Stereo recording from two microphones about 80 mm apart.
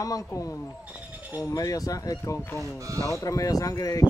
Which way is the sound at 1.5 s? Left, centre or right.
Left.